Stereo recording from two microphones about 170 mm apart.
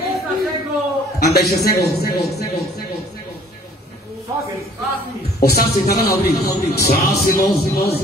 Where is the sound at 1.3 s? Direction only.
65° left (ahead or behind).